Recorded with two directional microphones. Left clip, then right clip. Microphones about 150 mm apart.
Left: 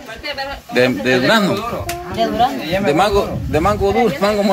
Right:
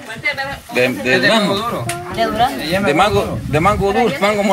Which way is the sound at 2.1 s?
20° left (ahead or behind).